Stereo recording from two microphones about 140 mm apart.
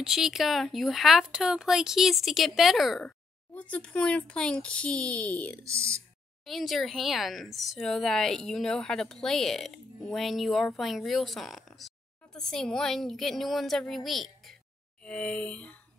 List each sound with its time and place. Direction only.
0.0 s speech: 5° right (ahead or behind)
5.6 s speech: 20° right (ahead or behind)
6.4 s speech: centre (ahead or behind)
15.0 s a sound: 10° left (ahead or behind)